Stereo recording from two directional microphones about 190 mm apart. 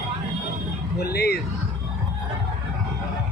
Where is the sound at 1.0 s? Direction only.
55° left (ahead or behind).